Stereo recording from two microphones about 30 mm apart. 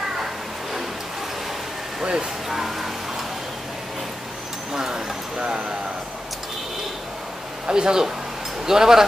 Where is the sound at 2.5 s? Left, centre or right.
Centre.